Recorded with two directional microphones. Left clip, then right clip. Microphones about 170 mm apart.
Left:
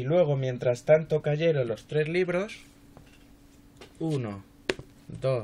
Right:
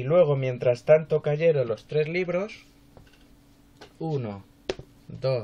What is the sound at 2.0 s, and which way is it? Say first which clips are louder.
Speech: left 4 dB; 45° left (ahead or behind).